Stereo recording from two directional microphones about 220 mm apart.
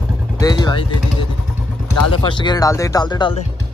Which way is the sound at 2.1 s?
20° left (ahead or behind).